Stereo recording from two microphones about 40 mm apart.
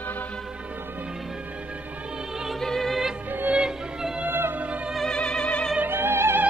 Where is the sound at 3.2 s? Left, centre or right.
Right.